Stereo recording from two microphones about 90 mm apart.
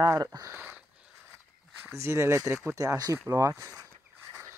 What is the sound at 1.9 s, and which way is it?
Speech, 30° right (ahead or behind).